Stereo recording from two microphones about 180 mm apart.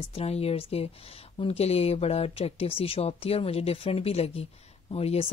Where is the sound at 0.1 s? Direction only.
35° left (ahead or behind).